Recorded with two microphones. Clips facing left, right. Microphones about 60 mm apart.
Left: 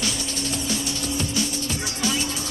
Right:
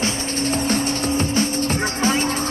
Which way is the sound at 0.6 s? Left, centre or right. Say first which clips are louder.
Right 7 dB; right.